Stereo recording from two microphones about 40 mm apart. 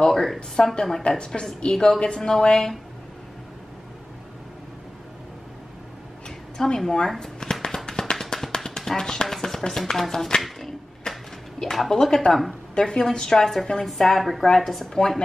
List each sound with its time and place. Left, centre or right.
0.0 s a woman's voice: centre
6.2 s a sound: centre
6.8 s speech: centre
7.6 s tap: centre
10.4 s a sound: centre
11.7 s a woman's voice: centre
12.7 s a woman's voice: centre